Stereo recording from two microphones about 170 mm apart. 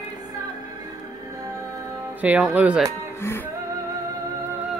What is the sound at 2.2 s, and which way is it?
Speech, 10° right (ahead or behind).